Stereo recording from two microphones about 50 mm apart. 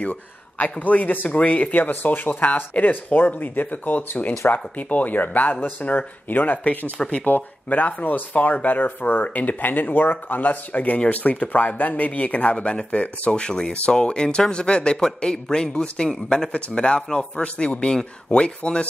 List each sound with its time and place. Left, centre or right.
0.0 s speech: left
7.0 s a man's voice: left
7.2 s a man's voice: left